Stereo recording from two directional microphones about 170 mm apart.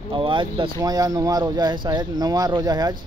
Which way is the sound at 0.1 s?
30° right (ahead or behind).